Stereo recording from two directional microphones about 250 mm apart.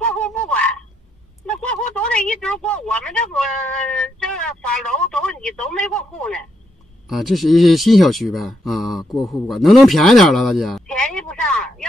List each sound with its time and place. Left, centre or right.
0.0 s frog: centre
1.4 s speech: centre